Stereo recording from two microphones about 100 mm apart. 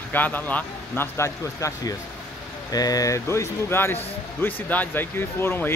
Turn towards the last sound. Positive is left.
turn(degrees=25)  # may be behind; listen again after turning